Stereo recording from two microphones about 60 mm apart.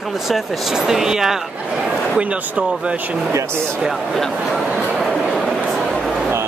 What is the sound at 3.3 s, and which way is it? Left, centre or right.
Speech, right.